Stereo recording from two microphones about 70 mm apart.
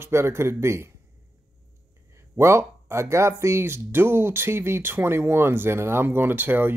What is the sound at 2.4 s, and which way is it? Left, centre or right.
Speech, right.